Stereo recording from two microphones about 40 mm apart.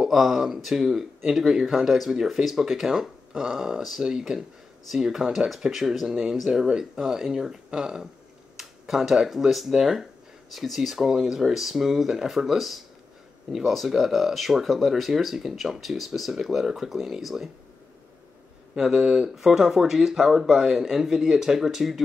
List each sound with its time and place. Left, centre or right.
0.0 s speech: centre
1.5 s speech: centre
1.8 s speech: centre
18.8 s speech: centre